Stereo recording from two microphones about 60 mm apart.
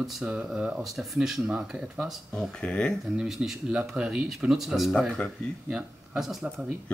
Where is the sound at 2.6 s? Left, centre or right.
Centre.